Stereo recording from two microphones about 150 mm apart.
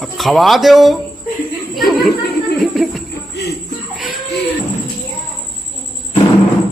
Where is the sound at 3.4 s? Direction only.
90° left.